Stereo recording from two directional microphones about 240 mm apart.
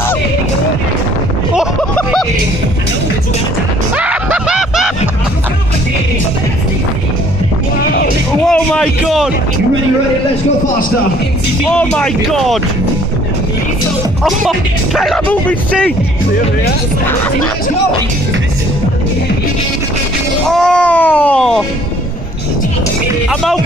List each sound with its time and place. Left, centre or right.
1.5 s a sound: centre
3.9 s snicker: centre
7.8 s music: left
8.5 s a sound: centre
11.7 s speech: centre
15.0 s speech: centre
20.4 s speech: centre